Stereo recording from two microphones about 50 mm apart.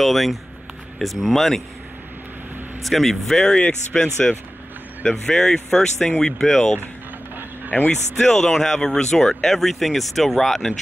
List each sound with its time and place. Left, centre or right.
0.0 s speech: centre
2.8 s speech: centre
8.2 s speech: centre